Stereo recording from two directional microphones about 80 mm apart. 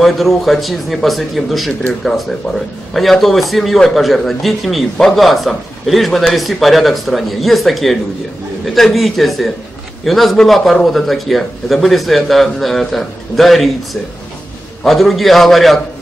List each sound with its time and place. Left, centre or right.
0.0 s a man's voice: centre
2.9 s a man's voice: centre
14.8 s a man's voice: centre